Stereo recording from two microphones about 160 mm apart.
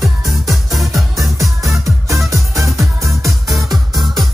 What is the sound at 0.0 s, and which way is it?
Music, centre (ahead or behind).